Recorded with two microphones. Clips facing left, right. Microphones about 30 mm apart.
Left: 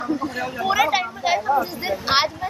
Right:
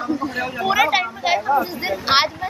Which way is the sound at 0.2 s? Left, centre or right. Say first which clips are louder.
Right 2 dB; centre.